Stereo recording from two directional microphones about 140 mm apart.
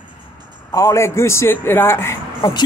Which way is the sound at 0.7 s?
20° left (ahead or behind).